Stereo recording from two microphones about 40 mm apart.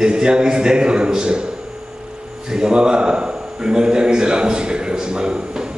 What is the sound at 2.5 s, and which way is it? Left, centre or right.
A man's voice, centre.